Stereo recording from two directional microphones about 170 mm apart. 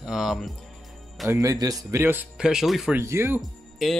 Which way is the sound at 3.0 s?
15° right (ahead or behind).